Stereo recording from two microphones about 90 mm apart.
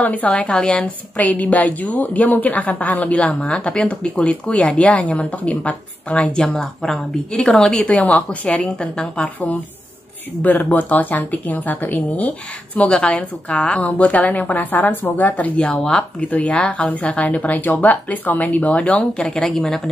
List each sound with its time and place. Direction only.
0.0 s speech: 15° left (ahead or behind)